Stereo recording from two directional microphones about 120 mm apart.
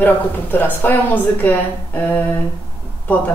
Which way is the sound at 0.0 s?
15° left (ahead or behind).